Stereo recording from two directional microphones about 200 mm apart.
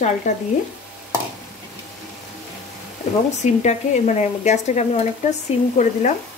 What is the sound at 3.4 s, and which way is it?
Speech, 35° left (ahead or behind).